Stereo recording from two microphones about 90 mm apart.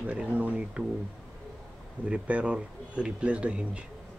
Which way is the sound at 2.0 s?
15° right (ahead or behind).